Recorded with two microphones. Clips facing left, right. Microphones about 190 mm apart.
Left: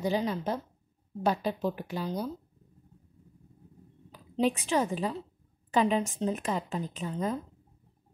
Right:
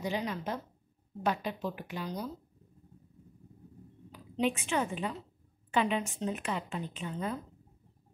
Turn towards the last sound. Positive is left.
turn(degrees=35)  # may be behind; listen again after turning